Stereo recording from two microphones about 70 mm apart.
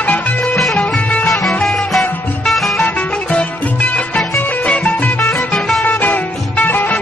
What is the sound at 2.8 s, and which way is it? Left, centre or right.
Music, centre.